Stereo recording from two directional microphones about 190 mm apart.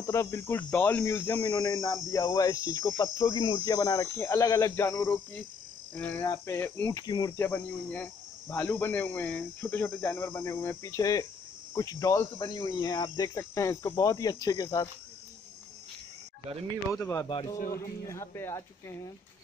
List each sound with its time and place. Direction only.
0.0 s speech: 15° left (ahead or behind)
16.9 s speech: 15° left (ahead or behind)